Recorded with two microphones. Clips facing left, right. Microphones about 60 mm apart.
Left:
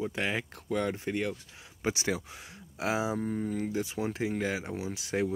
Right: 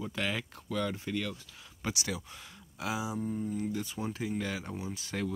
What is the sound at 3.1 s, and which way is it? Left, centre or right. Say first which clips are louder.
Speech: left 2 dB; left.